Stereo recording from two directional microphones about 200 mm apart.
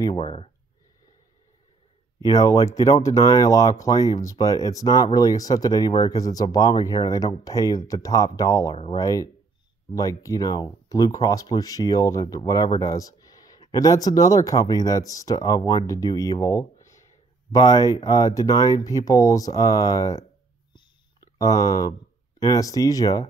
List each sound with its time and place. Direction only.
0.0 s speech: 25° left (ahead or behind)
2.1 s speech: 20° left (ahead or behind)
21.4 s speech: 15° left (ahead or behind)